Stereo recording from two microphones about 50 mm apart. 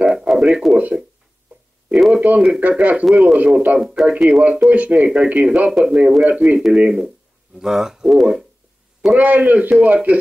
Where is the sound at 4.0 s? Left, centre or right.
Centre.